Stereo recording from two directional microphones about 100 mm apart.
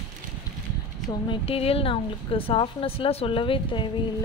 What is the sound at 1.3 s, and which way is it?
A woman's voice, 70° left (ahead or behind).